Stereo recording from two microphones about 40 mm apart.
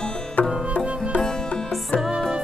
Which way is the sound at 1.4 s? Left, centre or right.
Left.